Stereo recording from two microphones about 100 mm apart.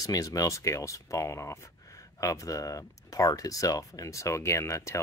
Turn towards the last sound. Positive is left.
turn(degrees=30)  # may be behind; listen again after turning